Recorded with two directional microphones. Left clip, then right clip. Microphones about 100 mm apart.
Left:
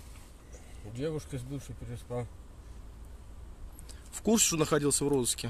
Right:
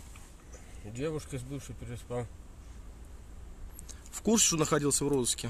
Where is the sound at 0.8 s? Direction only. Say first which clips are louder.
Right 1 dB; centre (ahead or behind).